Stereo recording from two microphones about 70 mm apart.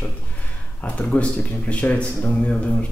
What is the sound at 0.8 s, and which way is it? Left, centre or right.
Speech, centre.